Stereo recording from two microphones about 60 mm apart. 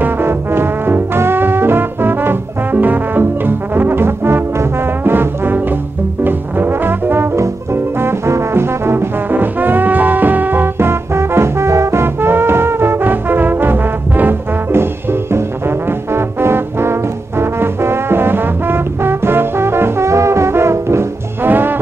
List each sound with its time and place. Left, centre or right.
0.0 s music: right
6.2 s brass instrument: right
7.3 s trombone: right
16.1 s brass instrument: right
21.5 s music: right